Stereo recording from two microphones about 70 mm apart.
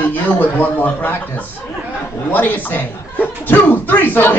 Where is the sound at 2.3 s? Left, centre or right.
Left.